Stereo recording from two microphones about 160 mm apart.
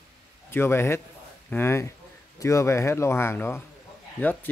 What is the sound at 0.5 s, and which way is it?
Speech, 15° left (ahead or behind).